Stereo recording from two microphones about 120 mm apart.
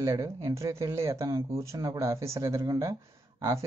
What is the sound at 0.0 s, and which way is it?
Speech, 25° right (ahead or behind).